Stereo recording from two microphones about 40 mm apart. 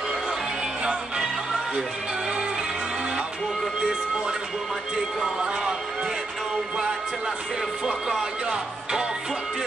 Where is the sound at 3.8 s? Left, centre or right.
Centre.